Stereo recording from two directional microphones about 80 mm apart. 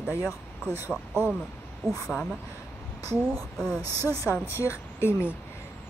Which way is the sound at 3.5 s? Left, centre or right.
Centre.